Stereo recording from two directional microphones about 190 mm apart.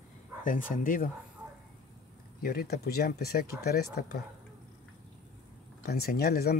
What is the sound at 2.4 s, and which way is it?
Speech, 55° left (ahead or behind).